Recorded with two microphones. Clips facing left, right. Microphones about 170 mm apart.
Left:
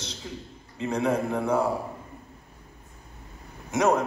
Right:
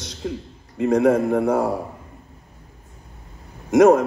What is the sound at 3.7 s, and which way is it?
Speech, 50° right (ahead or behind).